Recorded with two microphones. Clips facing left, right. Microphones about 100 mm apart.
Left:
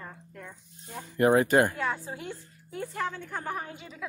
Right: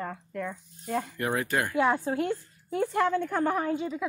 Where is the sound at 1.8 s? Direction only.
65° right (ahead or behind).